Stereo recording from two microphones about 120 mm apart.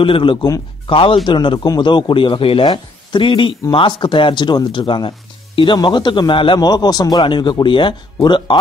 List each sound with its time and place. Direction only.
0.0 s a man's voice: 45° left (ahead or behind)